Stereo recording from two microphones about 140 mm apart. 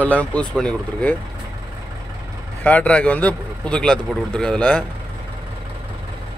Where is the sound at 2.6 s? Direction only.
10° left (ahead or behind).